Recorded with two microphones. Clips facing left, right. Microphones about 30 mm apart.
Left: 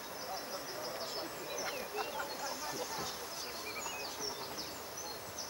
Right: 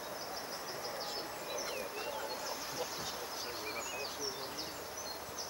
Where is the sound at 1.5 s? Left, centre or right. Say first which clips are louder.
Even; centre.